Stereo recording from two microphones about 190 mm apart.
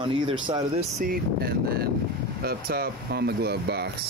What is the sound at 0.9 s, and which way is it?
Speech, 50° right (ahead or behind).